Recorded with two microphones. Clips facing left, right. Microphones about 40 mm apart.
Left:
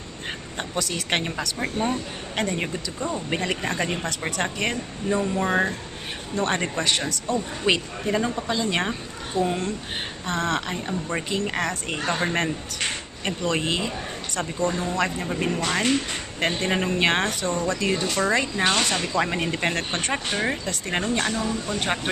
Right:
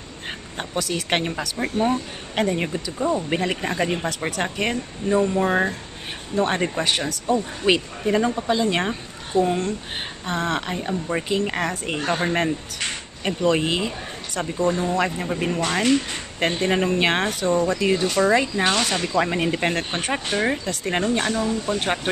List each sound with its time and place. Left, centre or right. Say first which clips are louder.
0.6 s a woman's voice: right 3 dB; centre
3.0 s speech: right 7 dB; right
3.3 s a woman's voice: right 2 dB; centre